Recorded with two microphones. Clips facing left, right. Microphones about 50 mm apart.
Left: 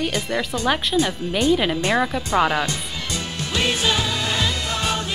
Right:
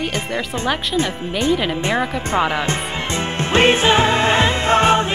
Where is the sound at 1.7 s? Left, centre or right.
Right.